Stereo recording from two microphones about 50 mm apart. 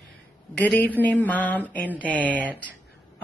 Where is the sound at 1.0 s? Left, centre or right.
Left.